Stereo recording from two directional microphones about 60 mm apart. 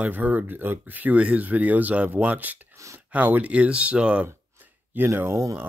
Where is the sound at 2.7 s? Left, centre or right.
Right.